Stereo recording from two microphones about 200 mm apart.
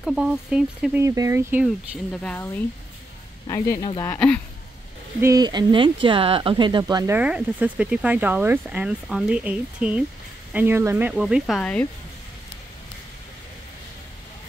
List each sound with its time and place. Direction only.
0.0 s speech: centre (ahead or behind)
1.0 s speech: 15° right (ahead or behind)
2.1 s speech: 10° left (ahead or behind)
5.2 s speech: 20° right (ahead or behind)
7.2 s speech: 5° right (ahead or behind)